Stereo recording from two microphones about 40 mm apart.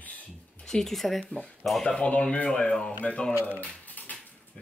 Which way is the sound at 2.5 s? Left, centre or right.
Centre.